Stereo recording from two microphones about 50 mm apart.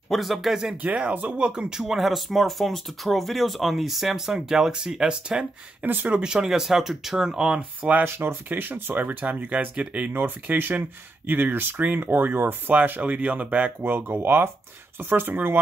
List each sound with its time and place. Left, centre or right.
0.1 s speech: centre
1.1 s speech: right
1.7 s speech: centre
5.9 s speech: right
6.1 s speech: centre
8.0 s speech: right
10.1 s speech: right
13.8 s speech: right